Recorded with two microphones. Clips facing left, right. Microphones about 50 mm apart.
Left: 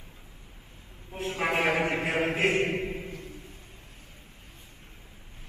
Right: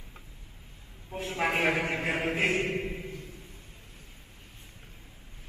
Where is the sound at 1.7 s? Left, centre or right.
Centre.